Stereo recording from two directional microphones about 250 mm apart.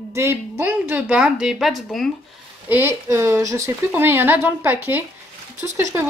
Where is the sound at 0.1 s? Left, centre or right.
Centre.